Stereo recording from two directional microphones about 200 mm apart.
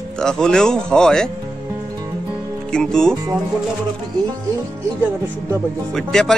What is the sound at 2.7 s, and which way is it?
Speech, 5° left (ahead or behind).